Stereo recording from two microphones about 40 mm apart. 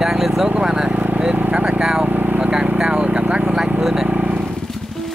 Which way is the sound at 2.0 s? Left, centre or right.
Right.